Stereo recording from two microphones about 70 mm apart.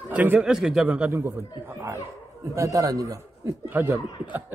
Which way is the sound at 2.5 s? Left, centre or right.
Right.